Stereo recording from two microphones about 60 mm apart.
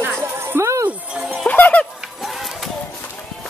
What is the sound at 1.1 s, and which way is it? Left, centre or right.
Music, centre.